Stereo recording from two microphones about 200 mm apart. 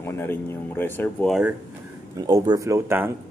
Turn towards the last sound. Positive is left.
turn(degrees=-10)  # may be behind; listen again after turning